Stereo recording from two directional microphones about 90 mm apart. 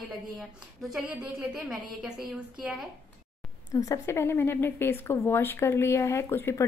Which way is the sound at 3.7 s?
40° left (ahead or behind).